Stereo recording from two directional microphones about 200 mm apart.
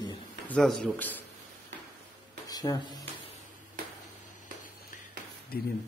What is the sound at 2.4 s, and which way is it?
Speech, 20° left (ahead or behind).